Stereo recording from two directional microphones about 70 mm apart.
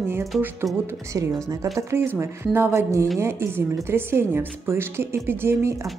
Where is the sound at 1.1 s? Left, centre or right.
Right.